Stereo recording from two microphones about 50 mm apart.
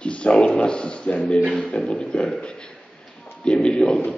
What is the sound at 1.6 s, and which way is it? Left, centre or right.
A man's voice, centre.